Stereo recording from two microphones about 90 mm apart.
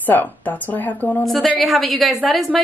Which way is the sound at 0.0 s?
20° left (ahead or behind).